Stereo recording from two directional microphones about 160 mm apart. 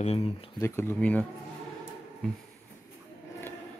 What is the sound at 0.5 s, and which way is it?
Speech, 15° left (ahead or behind).